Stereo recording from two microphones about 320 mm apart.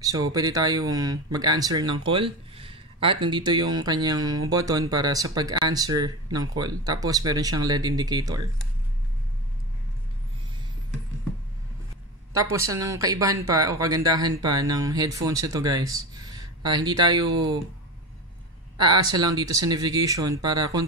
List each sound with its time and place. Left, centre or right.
0.0 s speech: centre
12.4 s speech: centre
18.8 s speech: centre